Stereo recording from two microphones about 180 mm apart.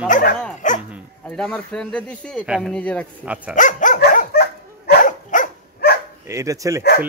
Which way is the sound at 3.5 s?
45° left (ahead or behind).